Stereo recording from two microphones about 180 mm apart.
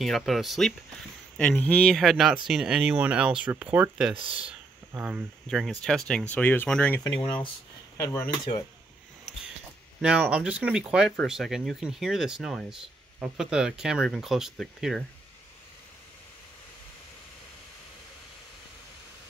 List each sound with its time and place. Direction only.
0.0 s speech: centre (ahead or behind)
4.2 s speech: 30° right (ahead or behind)
4.5 s speech: 5° right (ahead or behind); by 7.0 s 10° left (ahead or behind)
7.0 s speech: 30° left (ahead or behind)
8.0 s speech: 15° left (ahead or behind)
10.0 s speech: 5° right (ahead or behind)